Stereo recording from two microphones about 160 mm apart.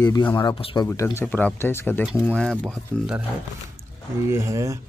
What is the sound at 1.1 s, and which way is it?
Speech, 10° left (ahead or behind).